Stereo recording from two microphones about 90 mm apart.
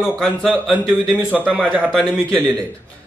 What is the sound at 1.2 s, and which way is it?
Speech, 15° right (ahead or behind).